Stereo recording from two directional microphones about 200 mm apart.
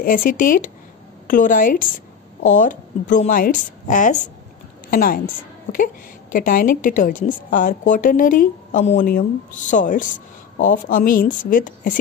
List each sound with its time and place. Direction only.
0.0 s a woman's voice: 45° left (ahead or behind)